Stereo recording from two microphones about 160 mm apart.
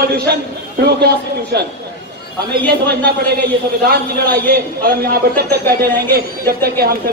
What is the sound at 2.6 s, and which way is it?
Speech, 90° right.